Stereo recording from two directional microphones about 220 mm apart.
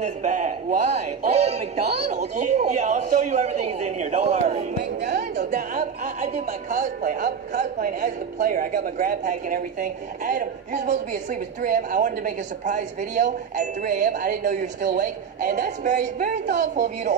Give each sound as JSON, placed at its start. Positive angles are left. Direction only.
{"t": 0.0, "sound": "speech", "side_deg": -35}
{"t": 5.1, "sound": "a sound", "side_deg": -45}
{"t": 5.8, "sound": "speech", "side_deg": -30}